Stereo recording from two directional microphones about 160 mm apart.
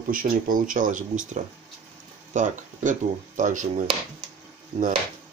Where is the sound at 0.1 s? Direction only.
60° right (ahead or behind).